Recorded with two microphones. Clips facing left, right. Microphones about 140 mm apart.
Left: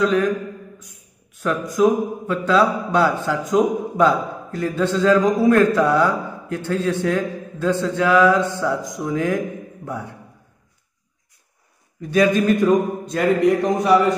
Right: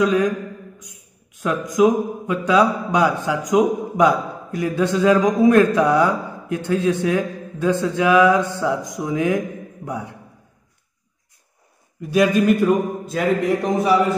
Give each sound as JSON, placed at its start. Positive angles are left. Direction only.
{"t": 1.4, "sound": "a man's voice", "side_deg": -20}
{"t": 12.0, "sound": "speech", "side_deg": -5}